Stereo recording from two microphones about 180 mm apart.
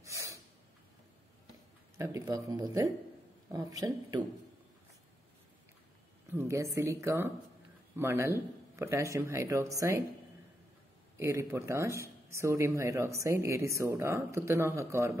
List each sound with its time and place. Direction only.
0.0 s snort: 15° right (ahead or behind)
2.0 s speech: 15° right (ahead or behind)
6.3 s speech: 15° right (ahead or behind)
11.1 s speech: 15° right (ahead or behind)